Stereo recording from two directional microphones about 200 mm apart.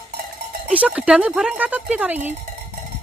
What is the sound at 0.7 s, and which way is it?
Speech, 5° right (ahead or behind).